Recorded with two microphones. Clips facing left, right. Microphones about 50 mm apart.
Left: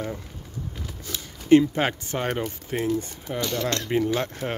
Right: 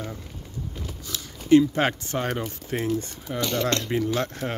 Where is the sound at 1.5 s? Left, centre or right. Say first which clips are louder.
Even; left.